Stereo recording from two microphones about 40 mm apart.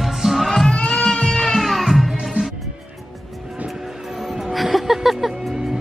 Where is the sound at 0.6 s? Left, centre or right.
Centre.